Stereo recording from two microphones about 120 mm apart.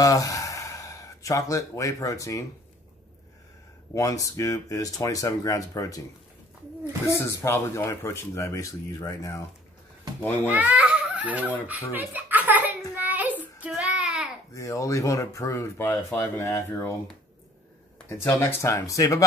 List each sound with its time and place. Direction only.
0.0 s a sound: 30° left (ahead or behind)
3.9 s speech: 30° left (ahead or behind)
7.1 s speech: 25° left (ahead or behind)
10.4 s speech: 10° right (ahead or behind)
13.0 s child singing: 15° right (ahead or behind)
14.5 s speech: 25° left (ahead or behind)
18.0 s speech: 20° left (ahead or behind)